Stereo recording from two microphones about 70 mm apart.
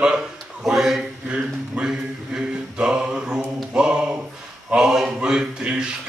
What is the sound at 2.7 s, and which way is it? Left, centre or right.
Mantra, centre.